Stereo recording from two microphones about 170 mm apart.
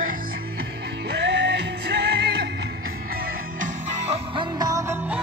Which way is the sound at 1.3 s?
90° right.